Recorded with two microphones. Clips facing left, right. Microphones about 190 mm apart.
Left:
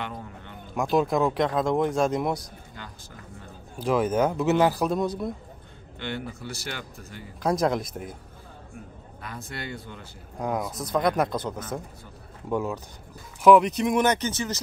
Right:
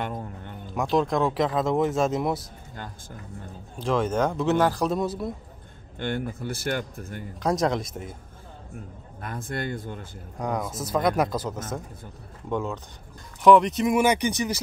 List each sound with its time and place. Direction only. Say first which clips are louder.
0.0 s a sound: right 3 dB; 45° right (ahead or behind)
0.7 s speech: even; centre (ahead or behind)
3.7 s speech: left 1 dB; 5° left (ahead or behind)
5.9 s a man's voice: right 4 dB; 50° right (ahead or behind)
7.4 s speech: even; centre (ahead or behind)
9.2 s a man's voice: right 5 dB; 50° right (ahead or behind)
10.4 s speech: even; centre (ahead or behind)